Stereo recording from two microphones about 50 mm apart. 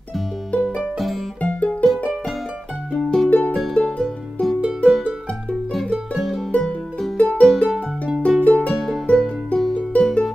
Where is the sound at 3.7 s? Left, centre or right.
Centre.